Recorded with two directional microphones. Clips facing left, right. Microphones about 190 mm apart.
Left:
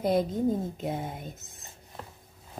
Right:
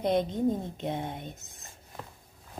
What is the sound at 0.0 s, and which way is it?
A woman's voice, centre (ahead or behind).